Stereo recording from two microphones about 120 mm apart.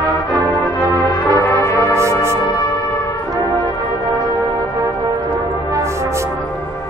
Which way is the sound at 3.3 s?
30° right (ahead or behind).